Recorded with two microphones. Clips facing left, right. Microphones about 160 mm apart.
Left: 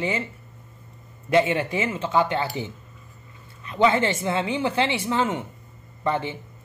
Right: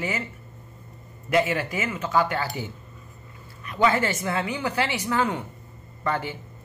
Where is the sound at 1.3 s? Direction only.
30° left (ahead or behind).